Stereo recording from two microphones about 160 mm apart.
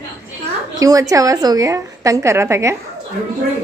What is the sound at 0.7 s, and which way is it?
A woman's voice, 20° right (ahead or behind).